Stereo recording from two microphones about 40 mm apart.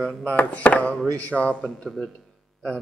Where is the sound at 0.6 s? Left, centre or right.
Left.